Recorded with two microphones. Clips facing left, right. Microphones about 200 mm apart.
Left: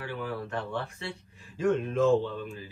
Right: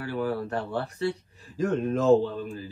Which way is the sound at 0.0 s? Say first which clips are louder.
Right 6 dB; 40° right (ahead or behind).